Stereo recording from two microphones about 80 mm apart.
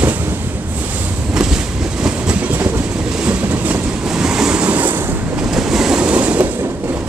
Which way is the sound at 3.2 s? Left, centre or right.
Centre.